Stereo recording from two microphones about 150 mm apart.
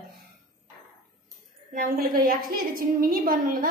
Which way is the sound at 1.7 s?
70° right (ahead or behind).